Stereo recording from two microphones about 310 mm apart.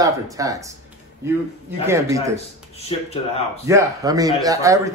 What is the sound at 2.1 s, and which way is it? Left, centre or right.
Speech, centre.